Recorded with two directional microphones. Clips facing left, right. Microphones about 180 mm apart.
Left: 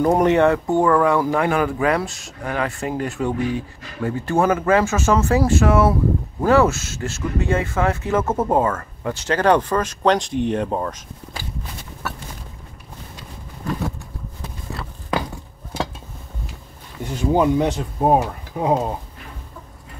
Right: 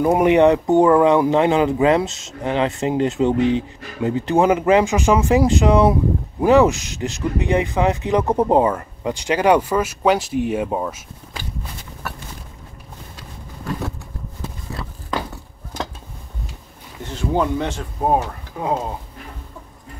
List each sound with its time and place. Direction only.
0.0 s speech: 10° right (ahead or behind)
17.0 s speech: 10° left (ahead or behind)